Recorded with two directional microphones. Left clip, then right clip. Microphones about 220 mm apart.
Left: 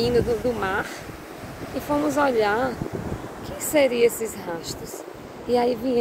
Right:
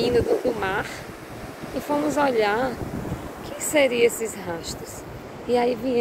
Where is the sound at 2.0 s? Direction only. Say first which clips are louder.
Even; 20° left (ahead or behind).